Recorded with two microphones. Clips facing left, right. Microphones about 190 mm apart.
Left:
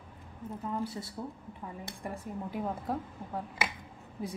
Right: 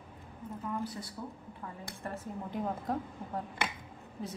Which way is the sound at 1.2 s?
25° left (ahead or behind).